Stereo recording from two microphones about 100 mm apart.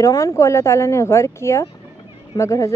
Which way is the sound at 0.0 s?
30° left (ahead or behind).